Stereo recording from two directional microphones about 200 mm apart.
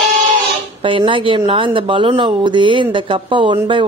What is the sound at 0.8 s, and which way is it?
Speech, 25° right (ahead or behind).